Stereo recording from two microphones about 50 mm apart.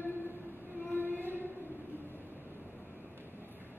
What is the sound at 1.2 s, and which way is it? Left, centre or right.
Music, right.